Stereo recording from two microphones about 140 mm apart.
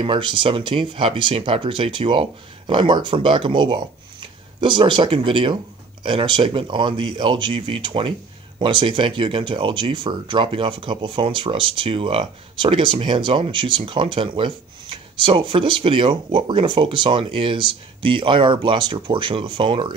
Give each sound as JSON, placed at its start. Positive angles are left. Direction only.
{"t": 0.0, "sound": "speech", "side_deg": -35}